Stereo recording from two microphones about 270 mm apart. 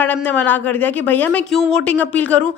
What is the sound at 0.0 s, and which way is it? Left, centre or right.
A man's voice, centre.